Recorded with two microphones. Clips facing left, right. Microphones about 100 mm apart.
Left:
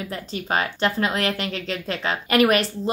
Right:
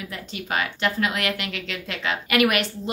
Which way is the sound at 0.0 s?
35° left (ahead or behind).